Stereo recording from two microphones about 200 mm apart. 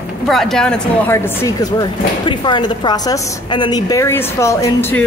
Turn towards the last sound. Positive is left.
turn(degrees=10)  # may be behind; listen again after turning